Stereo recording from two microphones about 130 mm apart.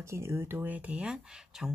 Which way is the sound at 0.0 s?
20° right (ahead or behind).